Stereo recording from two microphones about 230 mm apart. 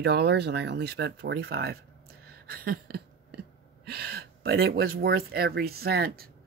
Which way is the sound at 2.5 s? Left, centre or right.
Right.